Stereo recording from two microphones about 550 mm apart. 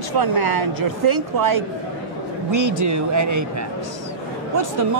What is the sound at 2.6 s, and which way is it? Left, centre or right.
Speech, right.